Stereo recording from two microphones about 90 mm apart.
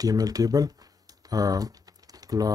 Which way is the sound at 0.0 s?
45° right (ahead or behind).